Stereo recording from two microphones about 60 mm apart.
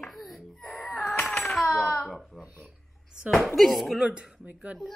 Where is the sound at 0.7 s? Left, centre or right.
Left.